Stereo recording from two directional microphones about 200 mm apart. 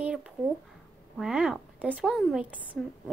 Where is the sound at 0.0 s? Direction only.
5° right (ahead or behind).